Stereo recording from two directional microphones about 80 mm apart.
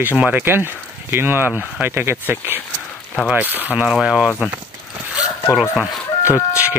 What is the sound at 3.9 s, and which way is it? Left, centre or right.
Speech, centre.